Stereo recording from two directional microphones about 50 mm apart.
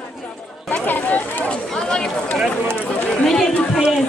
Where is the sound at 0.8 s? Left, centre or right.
Left.